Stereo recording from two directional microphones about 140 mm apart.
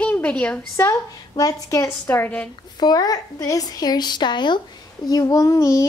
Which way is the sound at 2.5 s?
30° left (ahead or behind).